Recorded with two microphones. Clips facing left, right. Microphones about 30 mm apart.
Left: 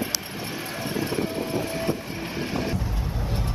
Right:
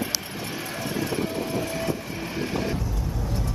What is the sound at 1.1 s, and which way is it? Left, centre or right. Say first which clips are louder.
Train: even; centre.